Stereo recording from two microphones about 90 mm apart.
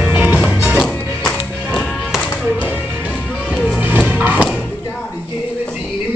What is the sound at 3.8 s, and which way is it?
Music, 20° right (ahead or behind).